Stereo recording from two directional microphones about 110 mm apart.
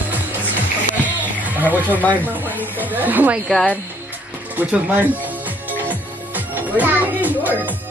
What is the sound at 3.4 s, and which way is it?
Speech, 5° left (ahead or behind).